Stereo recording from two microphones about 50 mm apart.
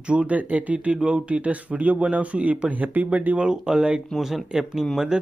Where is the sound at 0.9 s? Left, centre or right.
Centre.